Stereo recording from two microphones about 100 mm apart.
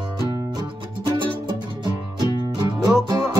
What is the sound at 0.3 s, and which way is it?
Music, 40° right (ahead or behind).